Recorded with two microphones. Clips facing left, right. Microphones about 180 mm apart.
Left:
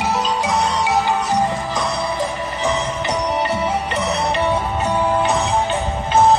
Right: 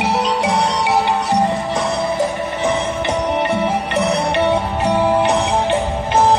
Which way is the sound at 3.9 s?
65° right (ahead or behind).